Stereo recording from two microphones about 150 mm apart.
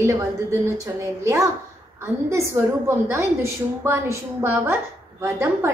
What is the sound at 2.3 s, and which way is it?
A woman's voice, 20° right (ahead or behind).